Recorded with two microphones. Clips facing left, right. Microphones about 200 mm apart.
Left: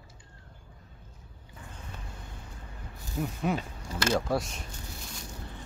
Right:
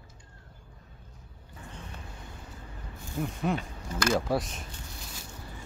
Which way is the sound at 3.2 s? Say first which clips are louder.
Even; centre (ahead or behind).